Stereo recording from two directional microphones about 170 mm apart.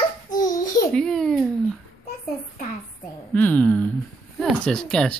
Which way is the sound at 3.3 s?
10° left (ahead or behind).